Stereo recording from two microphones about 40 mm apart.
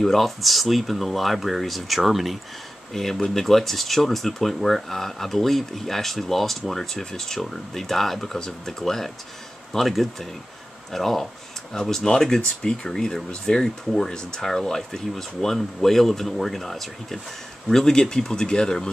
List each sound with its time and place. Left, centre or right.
0.0 s speech: centre
12.0 s speech: centre